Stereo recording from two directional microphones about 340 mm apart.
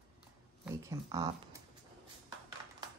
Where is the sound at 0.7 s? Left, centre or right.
Centre.